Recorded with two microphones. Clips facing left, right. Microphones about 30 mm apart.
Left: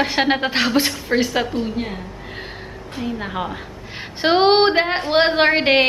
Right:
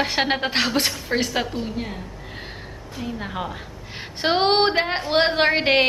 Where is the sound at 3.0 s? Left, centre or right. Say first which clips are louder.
Left 4 dB; centre.